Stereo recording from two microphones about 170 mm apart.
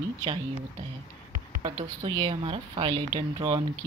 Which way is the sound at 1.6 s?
30° right (ahead or behind).